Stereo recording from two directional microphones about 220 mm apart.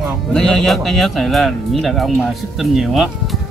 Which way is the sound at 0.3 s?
5° left (ahead or behind).